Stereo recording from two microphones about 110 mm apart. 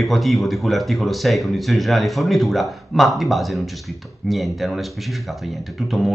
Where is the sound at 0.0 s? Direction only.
Centre (ahead or behind).